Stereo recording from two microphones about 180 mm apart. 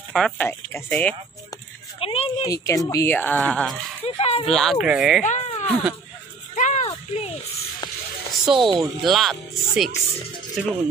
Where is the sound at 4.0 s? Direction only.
35° left (ahead or behind).